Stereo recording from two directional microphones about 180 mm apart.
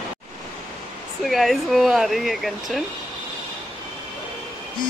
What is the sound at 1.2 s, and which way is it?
A man's voice, centre (ahead or behind).